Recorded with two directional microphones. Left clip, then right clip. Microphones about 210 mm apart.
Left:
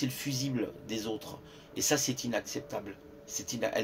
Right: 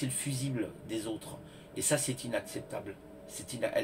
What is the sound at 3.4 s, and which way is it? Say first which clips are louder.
Speech: even; 50° left (ahead or behind).